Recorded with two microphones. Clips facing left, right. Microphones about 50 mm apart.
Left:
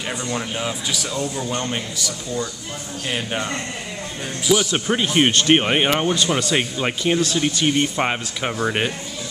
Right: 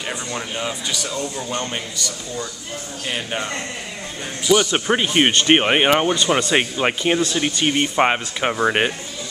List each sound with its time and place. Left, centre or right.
0.1 s speech: centre
4.7 s speech: centre